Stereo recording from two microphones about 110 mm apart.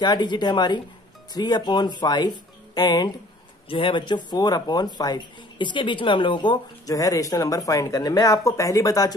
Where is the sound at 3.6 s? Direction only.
50° left (ahead or behind).